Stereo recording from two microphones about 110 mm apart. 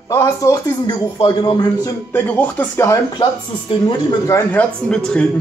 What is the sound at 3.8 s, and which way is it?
Speech, 30° left (ahead or behind).